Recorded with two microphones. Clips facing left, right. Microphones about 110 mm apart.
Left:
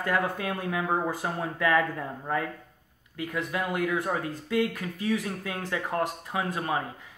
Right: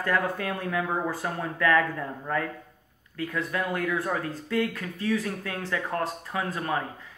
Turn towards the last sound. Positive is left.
turn(degrees=15)  # may be behind; listen again after turning